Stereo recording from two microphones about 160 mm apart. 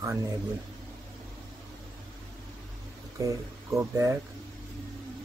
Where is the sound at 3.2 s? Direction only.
20° right (ahead or behind).